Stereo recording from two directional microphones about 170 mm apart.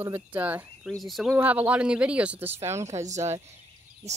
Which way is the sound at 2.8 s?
40° right (ahead or behind).